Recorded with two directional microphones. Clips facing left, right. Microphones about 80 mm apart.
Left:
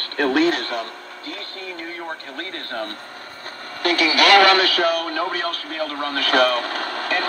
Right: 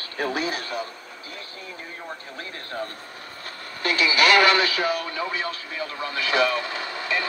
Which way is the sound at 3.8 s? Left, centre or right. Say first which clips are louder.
Left 3 dB; left.